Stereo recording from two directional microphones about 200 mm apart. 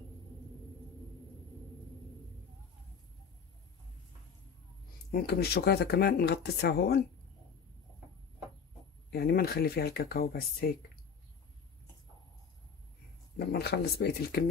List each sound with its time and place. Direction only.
5.1 s speech: 50° left (ahead or behind)
9.1 s speech: 50° left (ahead or behind)
13.5 s speech: 55° left (ahead or behind)